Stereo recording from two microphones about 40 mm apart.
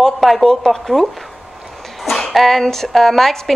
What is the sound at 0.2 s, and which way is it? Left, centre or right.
Speech, centre.